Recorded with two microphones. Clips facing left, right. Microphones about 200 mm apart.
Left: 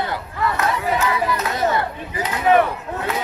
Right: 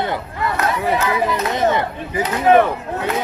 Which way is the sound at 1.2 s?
20° right (ahead or behind).